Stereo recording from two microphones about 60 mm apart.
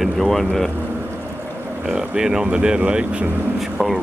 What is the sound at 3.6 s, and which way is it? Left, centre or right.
Speech, centre.